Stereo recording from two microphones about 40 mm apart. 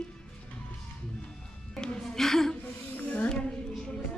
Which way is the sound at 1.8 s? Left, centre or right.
Centre.